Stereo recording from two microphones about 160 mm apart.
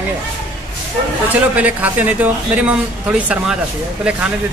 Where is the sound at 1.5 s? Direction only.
10° right (ahead or behind).